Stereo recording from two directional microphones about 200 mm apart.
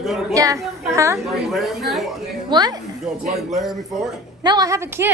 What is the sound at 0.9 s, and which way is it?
Speech, 15° right (ahead or behind).